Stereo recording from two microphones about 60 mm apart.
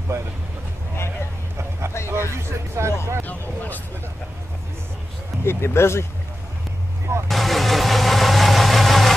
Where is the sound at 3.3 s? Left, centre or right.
Left.